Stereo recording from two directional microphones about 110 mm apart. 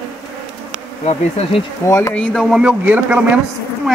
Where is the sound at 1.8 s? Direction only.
30° left (ahead or behind).